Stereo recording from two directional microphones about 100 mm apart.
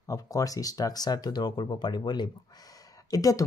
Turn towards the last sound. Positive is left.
turn(degrees=35)  # may be behind; listen again after turning